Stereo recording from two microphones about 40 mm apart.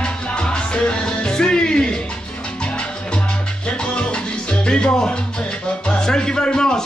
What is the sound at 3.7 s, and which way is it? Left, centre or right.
Salsa music, left.